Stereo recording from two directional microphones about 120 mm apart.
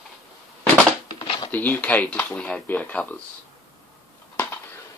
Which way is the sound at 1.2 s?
45° left (ahead or behind).